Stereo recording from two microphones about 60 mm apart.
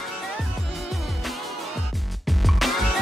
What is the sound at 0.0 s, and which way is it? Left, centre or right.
Music, centre.